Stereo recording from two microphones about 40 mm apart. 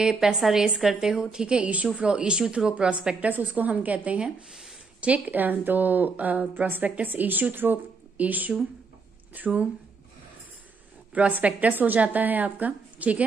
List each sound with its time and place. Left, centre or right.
0.0 s a woman's voice: centre
3.2 s a woman's voice: right
8.2 s a woman's voice: right
11.1 s a woman's voice: right